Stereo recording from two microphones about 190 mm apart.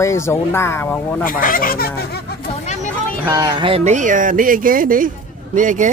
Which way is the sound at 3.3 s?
20° right (ahead or behind).